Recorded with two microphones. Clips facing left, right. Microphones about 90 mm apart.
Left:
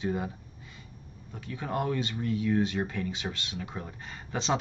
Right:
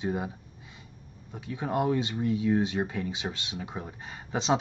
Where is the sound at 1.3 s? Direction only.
20° right (ahead or behind).